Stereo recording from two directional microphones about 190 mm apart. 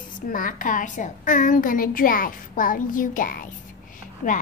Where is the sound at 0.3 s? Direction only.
45° left (ahead or behind).